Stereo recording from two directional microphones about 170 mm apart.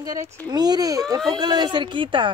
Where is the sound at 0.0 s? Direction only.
20° right (ahead or behind).